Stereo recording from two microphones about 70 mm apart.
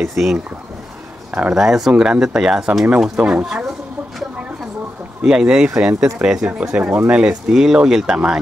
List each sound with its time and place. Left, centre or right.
0.0 s speech: centre
3.2 s speech: centre
5.2 s speech: centre